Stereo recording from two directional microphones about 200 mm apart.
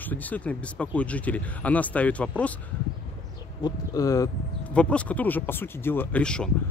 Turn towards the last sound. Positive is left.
turn(degrees=5)  # may be behind; listen again after turning